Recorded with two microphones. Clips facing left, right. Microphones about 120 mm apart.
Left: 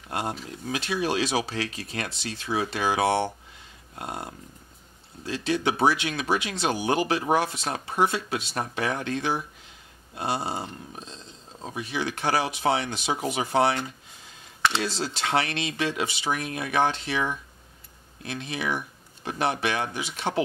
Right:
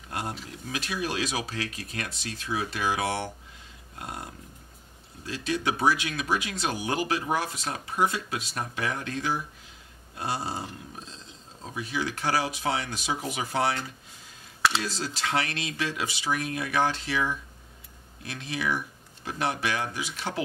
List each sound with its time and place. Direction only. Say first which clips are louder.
0.1 s speech: left 4 dB; 25° left (ahead or behind)
11.6 s speech: left 1 dB; 25° left (ahead or behind)